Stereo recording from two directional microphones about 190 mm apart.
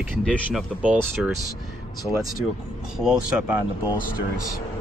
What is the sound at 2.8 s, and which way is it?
Speech, centre (ahead or behind).